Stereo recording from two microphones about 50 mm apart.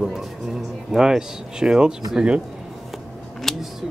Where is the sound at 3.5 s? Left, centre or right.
Centre.